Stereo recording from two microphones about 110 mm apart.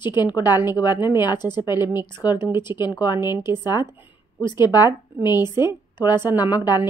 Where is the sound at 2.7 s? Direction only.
25° right (ahead or behind).